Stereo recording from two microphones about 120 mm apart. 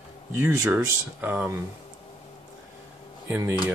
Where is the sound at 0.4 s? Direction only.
15° right (ahead or behind).